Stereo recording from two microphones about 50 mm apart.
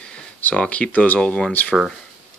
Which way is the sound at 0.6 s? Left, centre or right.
Left.